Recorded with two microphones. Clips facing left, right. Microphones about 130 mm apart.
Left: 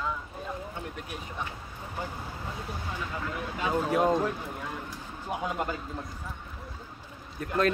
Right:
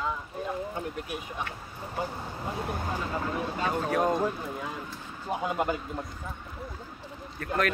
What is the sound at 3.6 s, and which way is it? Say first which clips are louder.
Speech: left 2 dB; 10° left (ahead or behind).